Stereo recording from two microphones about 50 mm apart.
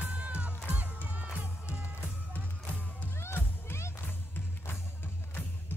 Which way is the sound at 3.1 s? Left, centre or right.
Left.